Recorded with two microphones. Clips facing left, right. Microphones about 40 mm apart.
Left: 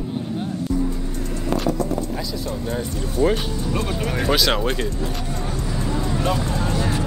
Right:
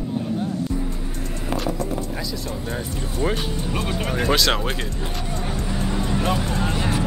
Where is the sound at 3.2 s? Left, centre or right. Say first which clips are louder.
Left 4 dB; centre.